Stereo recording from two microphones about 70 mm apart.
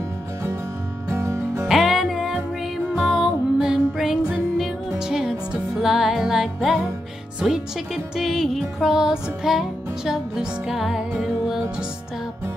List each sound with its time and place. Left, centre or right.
1.0 s music: right
1.7 s music: centre